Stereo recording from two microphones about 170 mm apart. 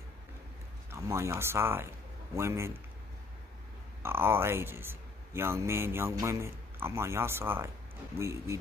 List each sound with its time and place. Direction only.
0.9 s speech: 15° right (ahead or behind)
4.0 s speech: 15° right (ahead or behind)